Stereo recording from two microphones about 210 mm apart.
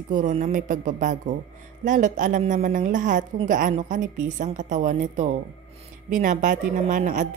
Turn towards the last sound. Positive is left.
turn(degrees=-35)  # may be behind; listen again after turning